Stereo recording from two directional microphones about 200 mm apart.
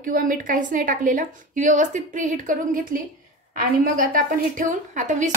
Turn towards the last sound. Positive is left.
turn(degrees=-40)  # may be behind; listen again after turning